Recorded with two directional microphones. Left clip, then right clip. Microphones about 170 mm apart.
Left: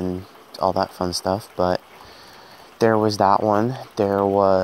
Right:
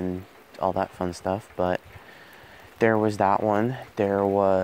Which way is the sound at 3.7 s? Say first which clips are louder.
Left 4 dB; 15° right (ahead or behind).